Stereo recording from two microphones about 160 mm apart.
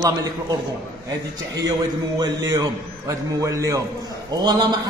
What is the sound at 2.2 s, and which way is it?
A man's voice, 20° right (ahead or behind).